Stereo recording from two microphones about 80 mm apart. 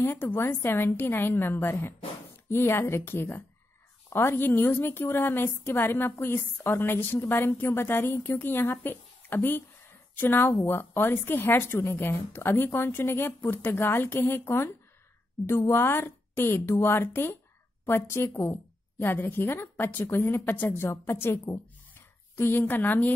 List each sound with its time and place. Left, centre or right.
0.0 s a woman's voice: left